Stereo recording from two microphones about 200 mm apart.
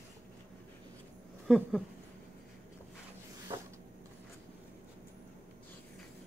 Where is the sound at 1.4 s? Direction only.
Centre (ahead or behind).